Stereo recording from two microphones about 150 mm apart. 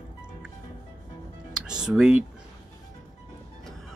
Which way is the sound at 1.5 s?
5° right (ahead or behind).